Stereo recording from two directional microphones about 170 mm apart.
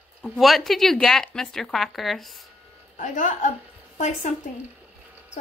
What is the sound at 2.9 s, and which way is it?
A woman's voice, 50° left (ahead or behind).